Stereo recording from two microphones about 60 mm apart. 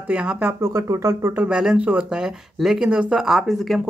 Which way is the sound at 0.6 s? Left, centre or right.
Right.